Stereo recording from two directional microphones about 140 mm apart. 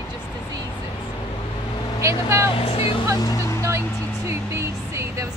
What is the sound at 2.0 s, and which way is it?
Speech, 20° right (ahead or behind).